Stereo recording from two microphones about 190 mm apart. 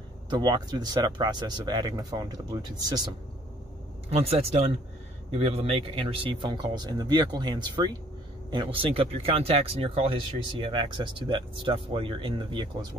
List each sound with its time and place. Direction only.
0.3 s speech: 20° right (ahead or behind)
4.1 s speech: 30° right (ahead or behind)